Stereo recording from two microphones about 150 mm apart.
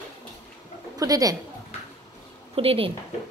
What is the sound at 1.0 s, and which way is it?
Speech, 25° right (ahead or behind).